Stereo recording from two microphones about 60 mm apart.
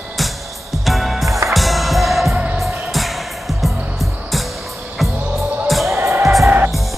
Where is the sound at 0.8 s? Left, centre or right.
Centre.